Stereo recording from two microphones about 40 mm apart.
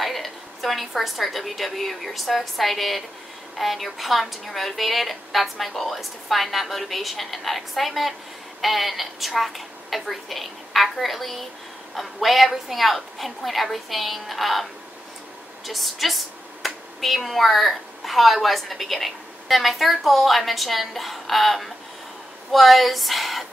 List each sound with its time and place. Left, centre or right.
0.0 s a woman's voice: centre